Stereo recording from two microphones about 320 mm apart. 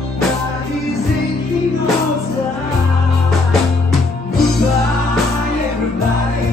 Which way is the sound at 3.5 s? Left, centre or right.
Centre.